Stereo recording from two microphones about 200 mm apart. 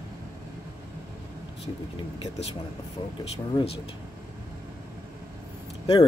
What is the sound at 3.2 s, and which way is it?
Speech, 30° left (ahead or behind).